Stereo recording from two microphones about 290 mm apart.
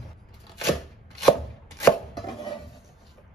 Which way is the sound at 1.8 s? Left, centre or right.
Centre.